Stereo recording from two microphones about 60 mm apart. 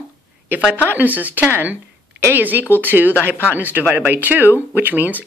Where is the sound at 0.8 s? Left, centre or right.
Right.